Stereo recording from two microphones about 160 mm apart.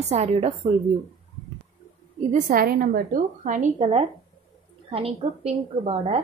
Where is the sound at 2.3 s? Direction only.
55° right (ahead or behind).